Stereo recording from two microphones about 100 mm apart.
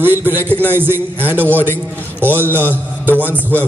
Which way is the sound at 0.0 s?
20° right (ahead or behind).